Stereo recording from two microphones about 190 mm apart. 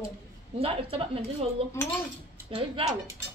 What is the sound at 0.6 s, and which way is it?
Speech, 30° right (ahead or behind).